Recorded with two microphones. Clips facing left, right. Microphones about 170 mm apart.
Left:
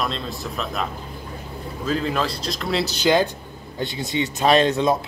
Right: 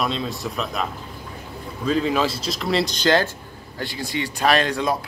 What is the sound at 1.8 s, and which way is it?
Speech, centre (ahead or behind).